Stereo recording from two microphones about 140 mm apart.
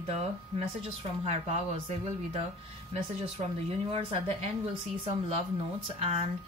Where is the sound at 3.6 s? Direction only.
45° right (ahead or behind).